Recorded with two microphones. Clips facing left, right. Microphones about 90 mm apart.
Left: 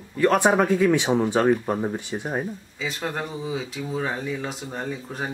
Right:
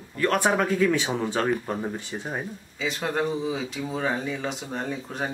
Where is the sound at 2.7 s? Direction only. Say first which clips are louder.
Right 3 dB; centre (ahead or behind).